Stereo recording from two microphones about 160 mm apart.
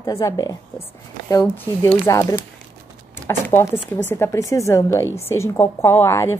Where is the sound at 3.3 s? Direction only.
15° left (ahead or behind).